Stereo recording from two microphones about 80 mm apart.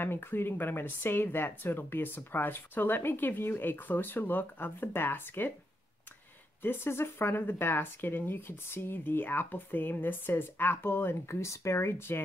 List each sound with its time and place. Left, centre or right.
0.0 s speech: left
6.6 s speech: left